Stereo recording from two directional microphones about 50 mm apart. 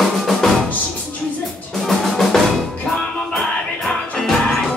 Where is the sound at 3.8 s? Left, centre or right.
Centre.